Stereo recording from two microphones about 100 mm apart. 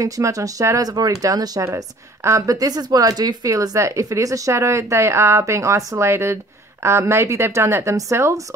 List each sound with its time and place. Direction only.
0.0 s speech: 35° right (ahead or behind)
1.6 s a woman's voice: 30° right (ahead or behind)